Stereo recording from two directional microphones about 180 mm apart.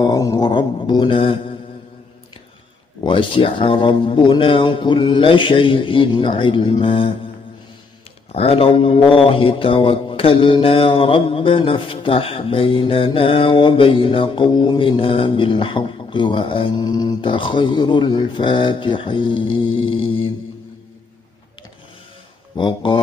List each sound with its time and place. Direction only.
0.0 s speech: 20° left (ahead or behind)
3.0 s speech: 25° left (ahead or behind)
8.3 s speech: 35° left (ahead or behind)
22.6 s speech: 25° left (ahead or behind)